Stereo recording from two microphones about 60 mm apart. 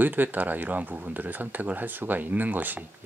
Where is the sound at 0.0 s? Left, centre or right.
Right.